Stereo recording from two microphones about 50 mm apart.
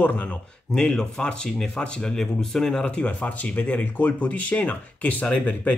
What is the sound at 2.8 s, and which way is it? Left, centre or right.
Speech, left.